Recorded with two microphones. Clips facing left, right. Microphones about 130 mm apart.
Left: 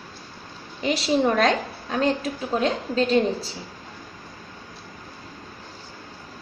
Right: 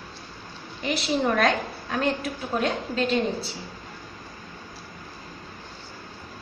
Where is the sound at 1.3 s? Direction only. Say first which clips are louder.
Left 2 dB; 25° left (ahead or behind).